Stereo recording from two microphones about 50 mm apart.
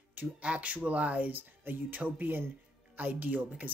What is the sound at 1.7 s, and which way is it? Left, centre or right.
Speech, right.